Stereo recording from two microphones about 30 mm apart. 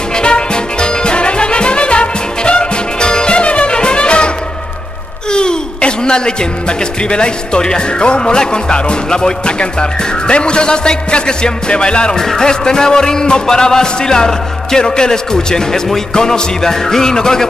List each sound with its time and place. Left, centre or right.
0.1 s music: left
5.3 s a sound: left
7.0 s a man's voice: left
12.2 s music: left